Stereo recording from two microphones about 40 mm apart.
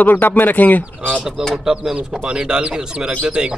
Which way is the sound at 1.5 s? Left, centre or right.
Centre.